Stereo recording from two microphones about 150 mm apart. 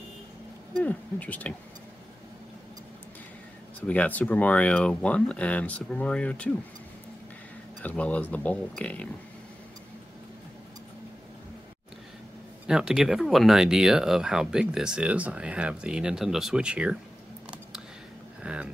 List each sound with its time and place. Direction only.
0.7 s speech: 10° left (ahead or behind)
3.8 s speech: 10° left (ahead or behind)
7.8 s speech: 10° left (ahead or behind)
12.6 s speech: 5° right (ahead or behind)
18.4 s a sound: 5° right (ahead or behind)